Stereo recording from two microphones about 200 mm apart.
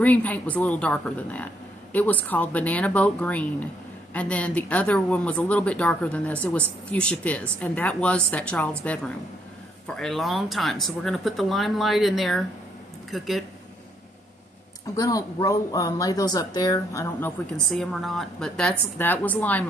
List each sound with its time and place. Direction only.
0.0 s a woman's voice: 10° left (ahead or behind)
15.0 s a woman's voice: 15° left (ahead or behind)
17.6 s speech: centre (ahead or behind)